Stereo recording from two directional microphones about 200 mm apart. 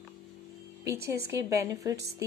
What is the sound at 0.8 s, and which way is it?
A woman's voice, 15° right (ahead or behind).